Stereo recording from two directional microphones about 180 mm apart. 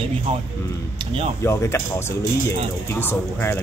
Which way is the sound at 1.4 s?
15° left (ahead or behind).